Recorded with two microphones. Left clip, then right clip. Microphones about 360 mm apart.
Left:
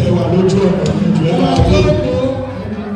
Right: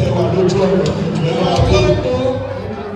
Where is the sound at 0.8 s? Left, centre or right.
Centre.